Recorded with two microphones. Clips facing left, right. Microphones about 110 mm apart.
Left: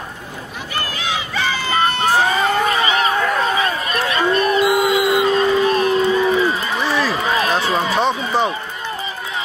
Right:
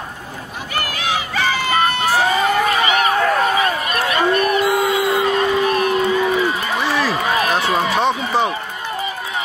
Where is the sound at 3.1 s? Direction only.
35° right (ahead or behind).